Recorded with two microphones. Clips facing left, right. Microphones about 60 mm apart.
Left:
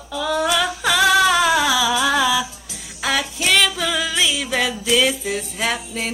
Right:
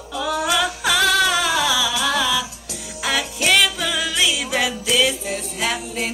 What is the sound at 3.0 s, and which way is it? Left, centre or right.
Music, centre.